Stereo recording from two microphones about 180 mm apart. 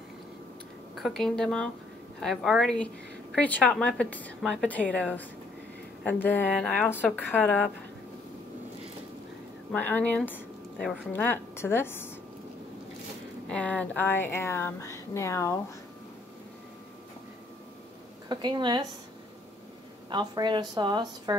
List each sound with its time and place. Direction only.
0.9 s a woman's voice: centre (ahead or behind)
9.7 s speech: 10° left (ahead or behind)
13.5 s speech: 5° left (ahead or behind)
18.3 s a woman's voice: 25° right (ahead or behind)
20.1 s a woman's voice: 25° right (ahead or behind)